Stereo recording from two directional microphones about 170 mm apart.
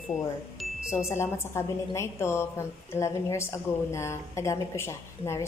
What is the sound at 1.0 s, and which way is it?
A woman's voice, 15° left (ahead or behind).